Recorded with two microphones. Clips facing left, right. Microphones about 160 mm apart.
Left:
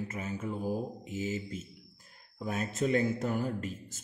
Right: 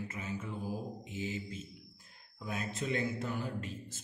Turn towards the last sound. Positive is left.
turn(degrees=45)  # may be behind; listen again after turning